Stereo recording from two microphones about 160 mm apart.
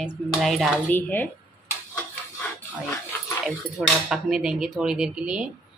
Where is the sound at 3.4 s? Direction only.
5° right (ahead or behind).